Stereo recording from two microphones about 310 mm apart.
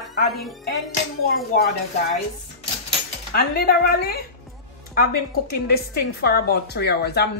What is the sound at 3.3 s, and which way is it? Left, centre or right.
A woman's voice, left.